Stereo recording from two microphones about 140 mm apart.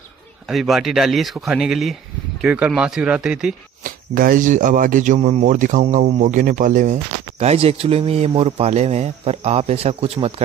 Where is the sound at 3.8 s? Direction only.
90° right.